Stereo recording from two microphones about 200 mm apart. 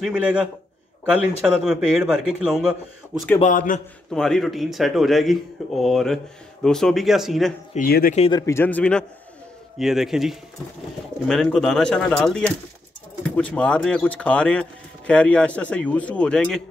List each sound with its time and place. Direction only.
0.0 s speech: 5° right (ahead or behind)
3.3 s a man's voice: 40° left (ahead or behind)
4.1 s speech: centre (ahead or behind)
7.7 s speech: 45° left (ahead or behind)
8.2 s speech: 20° left (ahead or behind); by 16.6 s 5° left (ahead or behind)